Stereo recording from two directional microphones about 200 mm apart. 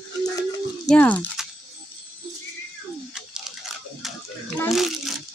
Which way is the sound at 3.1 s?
5° right (ahead or behind).